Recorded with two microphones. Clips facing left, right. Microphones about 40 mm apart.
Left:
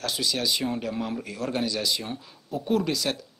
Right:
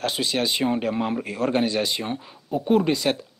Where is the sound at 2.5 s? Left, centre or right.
Right.